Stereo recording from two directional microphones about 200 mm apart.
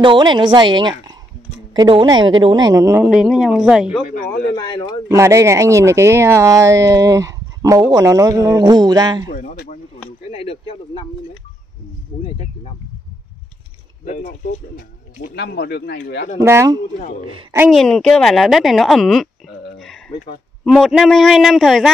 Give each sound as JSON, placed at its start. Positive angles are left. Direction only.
{"t": 0.0, "sound": "a woman's voice", "side_deg": -25}
{"t": 4.0, "sound": "speech", "side_deg": 45}
{"t": 4.6, "sound": "speech", "side_deg": 20}
{"t": 5.0, "sound": "speech", "side_deg": -15}
{"t": 9.3, "sound": "speech", "side_deg": 45}
{"t": 10.3, "sound": "speech", "side_deg": 30}
{"t": 14.0, "sound": "speech", "side_deg": 40}
{"t": 15.3, "sound": "speech", "side_deg": 55}
{"t": 16.3, "sound": "speech", "side_deg": -15}
{"t": 17.6, "sound": "speech", "side_deg": 0}
{"t": 20.6, "sound": "speech", "side_deg": 0}